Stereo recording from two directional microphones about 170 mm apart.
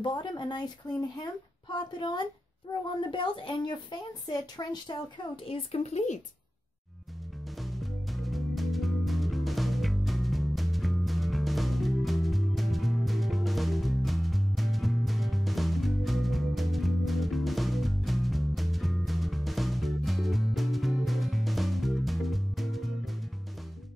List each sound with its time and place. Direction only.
0.0 s a woman's voice: 30° left (ahead or behind)
7.5 s music: centre (ahead or behind)